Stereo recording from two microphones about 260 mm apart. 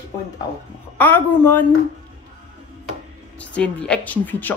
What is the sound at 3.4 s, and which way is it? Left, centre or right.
Speech, centre.